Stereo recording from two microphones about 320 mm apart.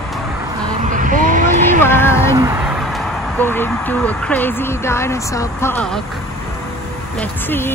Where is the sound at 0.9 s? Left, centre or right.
Right.